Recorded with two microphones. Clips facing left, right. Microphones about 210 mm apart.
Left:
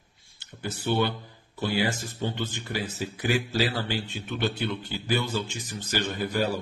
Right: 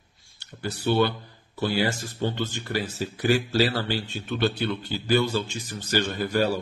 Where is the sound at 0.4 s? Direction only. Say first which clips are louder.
Right 3 dB; 20° left (ahead or behind).